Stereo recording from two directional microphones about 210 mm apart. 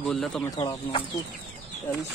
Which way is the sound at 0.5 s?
20° left (ahead or behind).